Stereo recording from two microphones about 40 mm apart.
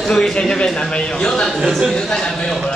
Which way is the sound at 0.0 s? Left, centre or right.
Centre.